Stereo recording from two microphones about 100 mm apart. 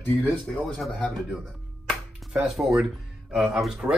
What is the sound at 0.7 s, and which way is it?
Speech, centre (ahead or behind).